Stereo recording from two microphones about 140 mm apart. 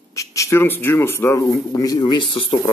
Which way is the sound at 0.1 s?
20° left (ahead or behind).